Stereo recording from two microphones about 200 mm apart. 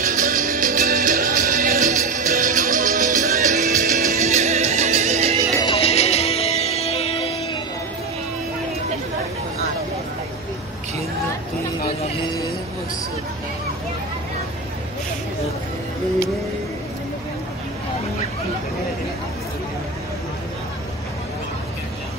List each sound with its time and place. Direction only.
0.0 s music: 40° right (ahead or behind)
5.5 s music: 20° left (ahead or behind)